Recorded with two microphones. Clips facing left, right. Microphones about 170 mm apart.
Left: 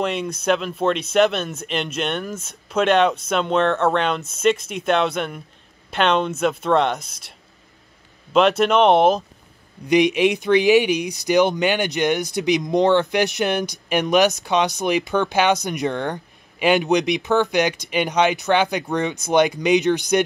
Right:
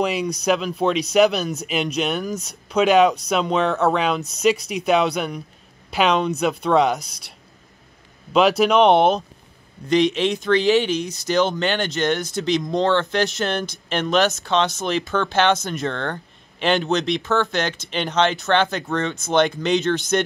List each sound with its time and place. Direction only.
0.0 s speech: centre (ahead or behind)
8.3 s speech: centre (ahead or behind)
9.8 s speech: 15° left (ahead or behind)